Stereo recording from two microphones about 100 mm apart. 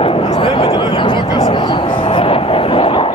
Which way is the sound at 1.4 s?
55° left (ahead or behind).